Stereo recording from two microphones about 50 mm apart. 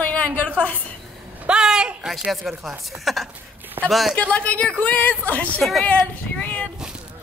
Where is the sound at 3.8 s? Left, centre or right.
Right.